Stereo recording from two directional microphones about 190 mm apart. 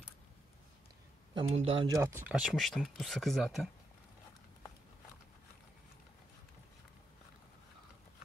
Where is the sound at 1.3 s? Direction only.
30° right (ahead or behind).